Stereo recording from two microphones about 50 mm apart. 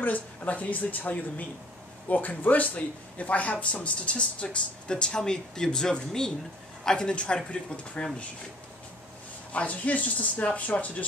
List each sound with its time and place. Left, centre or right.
0.0 s a woman's voice: left
9.5 s speech: left